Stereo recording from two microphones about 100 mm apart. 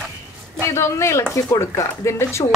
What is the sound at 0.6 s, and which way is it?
A woman's voice, 30° left (ahead or behind).